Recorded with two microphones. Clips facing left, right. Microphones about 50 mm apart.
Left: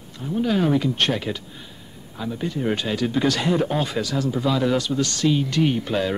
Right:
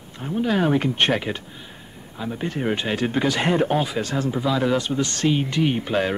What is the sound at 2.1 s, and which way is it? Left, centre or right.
Speech, right.